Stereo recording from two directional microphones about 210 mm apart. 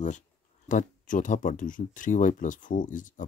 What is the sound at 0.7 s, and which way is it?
Speech, 40° left (ahead or behind).